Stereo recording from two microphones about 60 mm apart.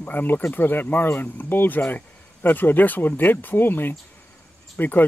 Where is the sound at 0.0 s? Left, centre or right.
Left.